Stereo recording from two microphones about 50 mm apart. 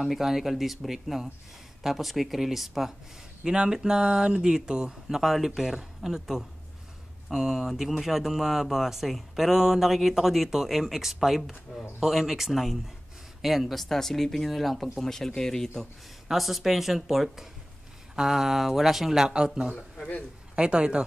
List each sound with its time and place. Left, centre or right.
0.0 s speech: centre
3.4 s speech: centre
16.3 s speech: centre